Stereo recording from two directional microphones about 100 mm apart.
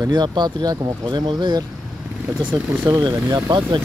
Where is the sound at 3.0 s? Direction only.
45° right (ahead or behind).